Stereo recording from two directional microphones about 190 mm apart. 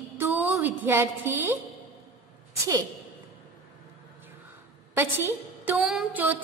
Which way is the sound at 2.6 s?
20° right (ahead or behind).